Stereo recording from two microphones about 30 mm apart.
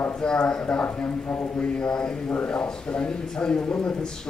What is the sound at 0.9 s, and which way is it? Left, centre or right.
A man's voice, left.